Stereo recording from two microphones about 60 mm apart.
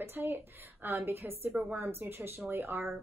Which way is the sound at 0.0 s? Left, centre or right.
Right.